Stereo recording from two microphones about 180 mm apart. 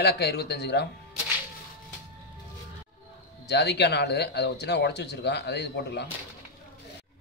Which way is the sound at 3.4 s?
70° left (ahead or behind).